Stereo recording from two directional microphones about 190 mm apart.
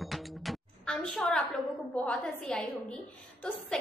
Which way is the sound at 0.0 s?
Centre (ahead or behind).